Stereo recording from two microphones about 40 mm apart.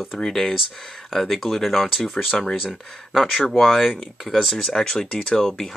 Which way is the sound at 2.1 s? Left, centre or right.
Centre.